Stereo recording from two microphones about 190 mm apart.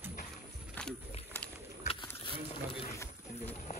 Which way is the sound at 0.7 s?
5° left (ahead or behind).